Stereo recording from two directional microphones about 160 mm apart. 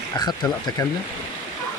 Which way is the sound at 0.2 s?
25° left (ahead or behind).